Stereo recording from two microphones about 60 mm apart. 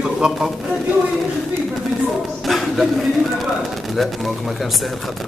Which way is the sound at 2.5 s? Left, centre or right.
Centre.